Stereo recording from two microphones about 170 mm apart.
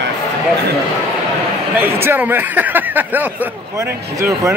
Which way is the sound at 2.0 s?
10° right (ahead or behind).